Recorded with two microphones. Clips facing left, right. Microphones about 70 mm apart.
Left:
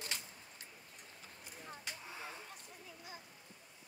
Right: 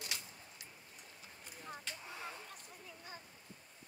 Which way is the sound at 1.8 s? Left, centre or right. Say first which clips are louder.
Even; centre.